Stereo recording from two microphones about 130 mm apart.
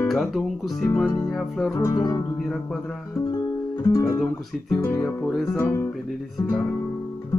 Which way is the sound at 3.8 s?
25° left (ahead or behind).